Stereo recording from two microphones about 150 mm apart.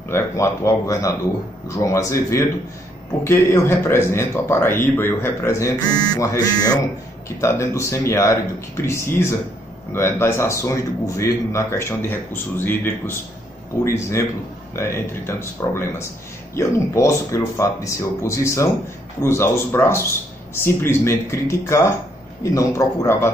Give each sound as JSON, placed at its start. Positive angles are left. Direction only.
{"t": 0.1, "sound": "speech", "side_deg": 20}